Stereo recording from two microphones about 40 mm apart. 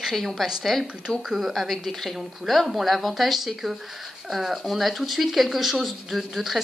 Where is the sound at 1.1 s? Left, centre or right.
Centre.